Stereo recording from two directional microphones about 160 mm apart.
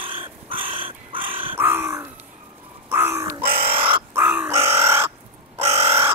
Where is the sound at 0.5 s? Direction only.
35° right (ahead or behind).